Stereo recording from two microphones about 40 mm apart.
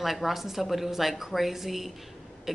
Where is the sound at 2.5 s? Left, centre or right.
Centre.